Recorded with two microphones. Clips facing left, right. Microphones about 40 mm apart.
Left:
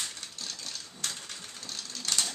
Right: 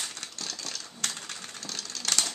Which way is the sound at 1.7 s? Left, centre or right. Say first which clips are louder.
Right 2 dB; right.